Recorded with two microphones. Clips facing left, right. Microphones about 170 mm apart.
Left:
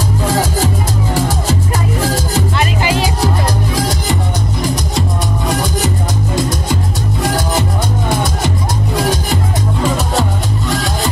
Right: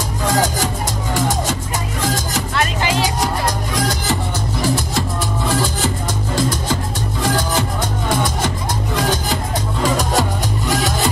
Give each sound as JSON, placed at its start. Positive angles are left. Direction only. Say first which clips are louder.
{"t": 9.8, "sound": "music", "louder": "even", "side_deg": 5}